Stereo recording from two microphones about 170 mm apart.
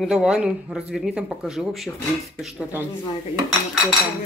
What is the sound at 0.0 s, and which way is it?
Speech, 5° right (ahead or behind).